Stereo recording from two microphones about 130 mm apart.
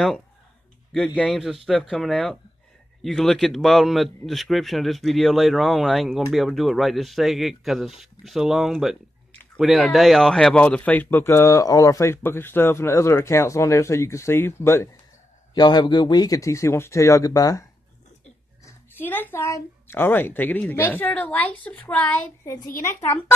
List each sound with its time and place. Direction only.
0.9 s a man's voice: 10° left (ahead or behind)
15.5 s speech: 35° left (ahead or behind)
18.7 s speech: 15° left (ahead or behind)